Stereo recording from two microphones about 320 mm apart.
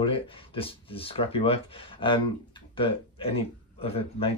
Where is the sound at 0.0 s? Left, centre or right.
Centre.